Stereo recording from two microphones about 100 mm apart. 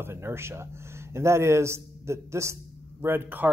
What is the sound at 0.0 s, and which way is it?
A man's voice, 25° right (ahead or behind).